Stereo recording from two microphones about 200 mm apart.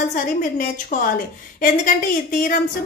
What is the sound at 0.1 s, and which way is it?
A woman's voice, 40° left (ahead or behind).